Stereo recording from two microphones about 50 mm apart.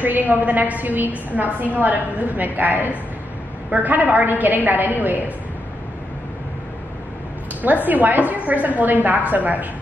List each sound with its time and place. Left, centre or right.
0.0 s a woman's voice: right
7.6 s a woman's voice: right